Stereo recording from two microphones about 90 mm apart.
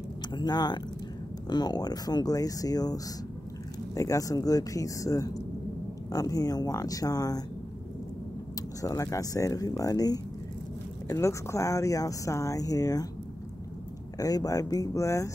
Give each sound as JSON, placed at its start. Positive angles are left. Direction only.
{"t": 0.3, "sound": "speech", "side_deg": 55}
{"t": 8.8, "sound": "speech", "side_deg": 40}
{"t": 11.1, "sound": "speech", "side_deg": 35}
{"t": 14.1, "sound": "speech", "side_deg": 40}